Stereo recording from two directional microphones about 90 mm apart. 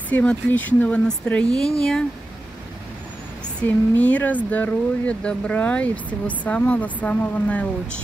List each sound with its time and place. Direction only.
0.1 s speech: 15° left (ahead or behind)
3.6 s speech: 15° left (ahead or behind)